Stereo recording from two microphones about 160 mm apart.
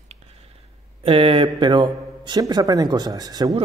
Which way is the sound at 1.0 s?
35° right (ahead or behind).